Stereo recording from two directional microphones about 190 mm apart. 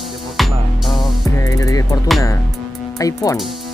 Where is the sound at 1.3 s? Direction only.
15° left (ahead or behind).